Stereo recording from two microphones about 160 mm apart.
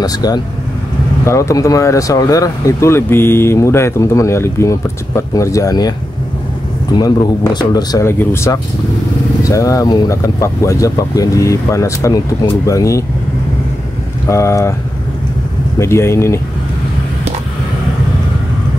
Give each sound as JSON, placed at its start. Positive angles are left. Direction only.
{"t": 0.0, "sound": "speech", "side_deg": 25}
{"t": 7.0, "sound": "speech", "side_deg": 25}
{"t": 14.3, "sound": "speech", "side_deg": 20}
{"t": 15.8, "sound": "speech", "side_deg": 15}